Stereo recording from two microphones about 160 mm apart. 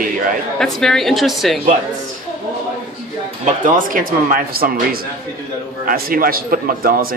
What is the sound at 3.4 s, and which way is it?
Speech, 55° right (ahead or behind).